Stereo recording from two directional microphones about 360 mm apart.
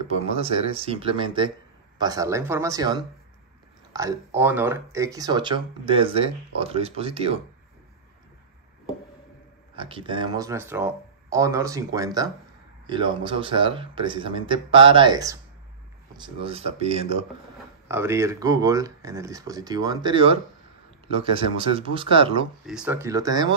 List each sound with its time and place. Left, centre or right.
0.2 s speech: centre
9.8 s speech: centre
22.7 s speech: centre